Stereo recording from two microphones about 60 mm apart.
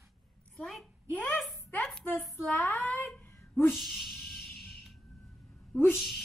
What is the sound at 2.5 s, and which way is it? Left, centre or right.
Speech, left.